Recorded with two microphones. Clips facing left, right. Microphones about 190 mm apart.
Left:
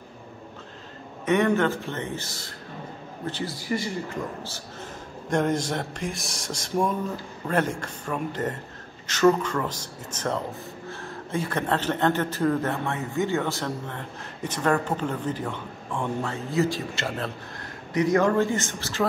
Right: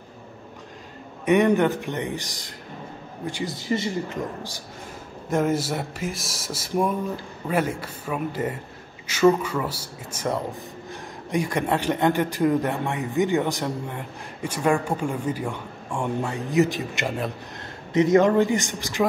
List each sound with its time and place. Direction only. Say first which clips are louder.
1.2 s a man's voice: right 3 dB; 15° right (ahead or behind)
5.3 s a sound: right 1 dB; 5° right (ahead or behind)
7.4 s a man's voice: right 1 dB; 10° right (ahead or behind)